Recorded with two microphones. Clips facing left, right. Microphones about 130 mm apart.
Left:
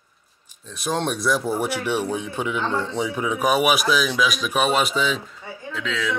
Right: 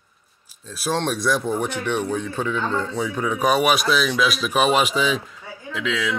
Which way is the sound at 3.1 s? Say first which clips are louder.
Right 1 dB; 5° left (ahead or behind).